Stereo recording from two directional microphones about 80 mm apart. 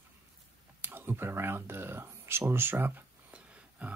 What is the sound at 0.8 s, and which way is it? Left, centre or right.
Speech, right.